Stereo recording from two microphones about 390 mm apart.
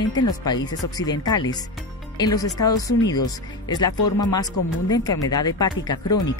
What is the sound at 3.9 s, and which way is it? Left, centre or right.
Speech, left.